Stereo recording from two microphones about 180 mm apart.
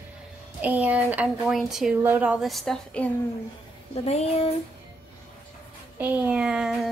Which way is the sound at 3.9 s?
35° left (ahead or behind).